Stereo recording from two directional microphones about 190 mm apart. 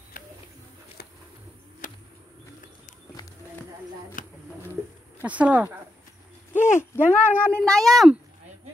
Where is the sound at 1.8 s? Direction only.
45° left (ahead or behind).